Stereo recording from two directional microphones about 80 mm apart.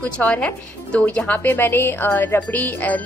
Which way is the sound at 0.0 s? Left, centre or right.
Centre.